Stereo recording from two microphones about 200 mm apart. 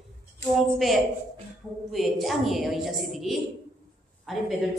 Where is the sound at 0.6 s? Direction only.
Centre (ahead or behind).